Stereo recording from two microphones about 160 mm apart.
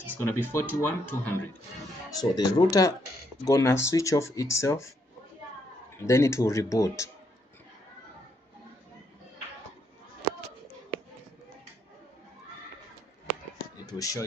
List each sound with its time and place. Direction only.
0.1 s speech: 15° left (ahead or behind)
2.0 s speech: 25° left (ahead or behind)
5.9 s speech: 15° left (ahead or behind)
13.9 s speech: 20° left (ahead or behind)